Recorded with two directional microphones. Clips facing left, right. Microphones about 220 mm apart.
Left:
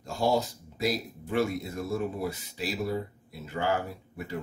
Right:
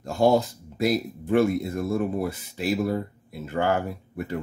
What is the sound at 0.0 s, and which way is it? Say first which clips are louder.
Speech: right 6 dB; 55° right (ahead or behind).